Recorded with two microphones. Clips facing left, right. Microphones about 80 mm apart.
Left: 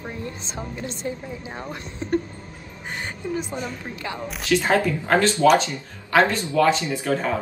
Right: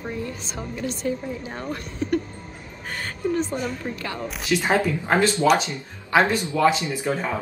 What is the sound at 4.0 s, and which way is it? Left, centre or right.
Speech, centre.